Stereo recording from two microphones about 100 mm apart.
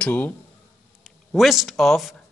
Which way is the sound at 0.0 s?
15° left (ahead or behind).